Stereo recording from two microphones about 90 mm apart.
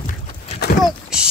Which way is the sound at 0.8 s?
5° right (ahead or behind).